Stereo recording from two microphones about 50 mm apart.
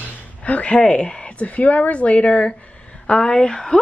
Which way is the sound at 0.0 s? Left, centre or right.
Left.